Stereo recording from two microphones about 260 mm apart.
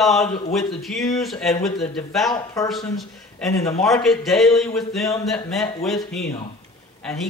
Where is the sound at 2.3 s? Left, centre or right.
Centre.